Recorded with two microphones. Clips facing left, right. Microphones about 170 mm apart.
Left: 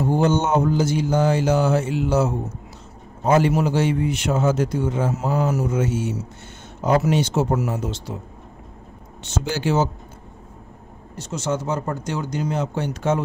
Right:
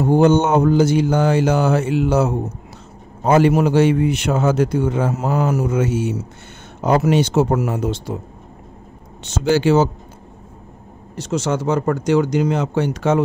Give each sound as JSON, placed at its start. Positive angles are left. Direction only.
{"t": 0.0, "sound": "a man's voice", "side_deg": -60}
{"t": 9.2, "sound": "speech", "side_deg": -85}
{"t": 11.1, "sound": "speech", "side_deg": -90}